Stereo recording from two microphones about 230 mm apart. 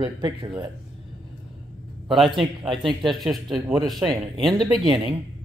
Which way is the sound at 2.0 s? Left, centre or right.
Centre.